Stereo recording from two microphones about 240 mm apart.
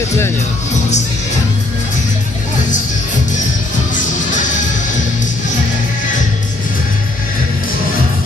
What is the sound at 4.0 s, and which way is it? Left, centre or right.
Music, left.